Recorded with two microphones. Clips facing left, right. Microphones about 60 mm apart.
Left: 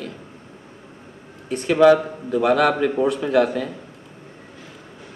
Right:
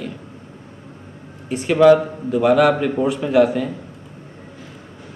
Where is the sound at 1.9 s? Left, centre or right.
Centre.